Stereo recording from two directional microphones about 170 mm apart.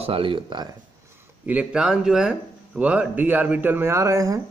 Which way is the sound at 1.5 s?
5° right (ahead or behind).